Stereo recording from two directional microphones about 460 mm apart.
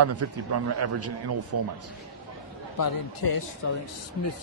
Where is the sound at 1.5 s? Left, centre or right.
Right.